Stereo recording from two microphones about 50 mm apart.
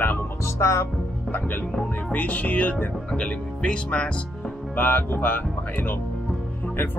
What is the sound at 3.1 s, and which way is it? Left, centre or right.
Speech, left.